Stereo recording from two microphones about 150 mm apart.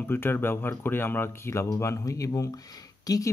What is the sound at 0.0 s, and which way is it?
Speech, 15° left (ahead or behind).